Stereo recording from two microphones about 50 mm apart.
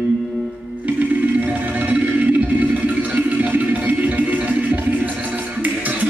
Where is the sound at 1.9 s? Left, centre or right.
Right.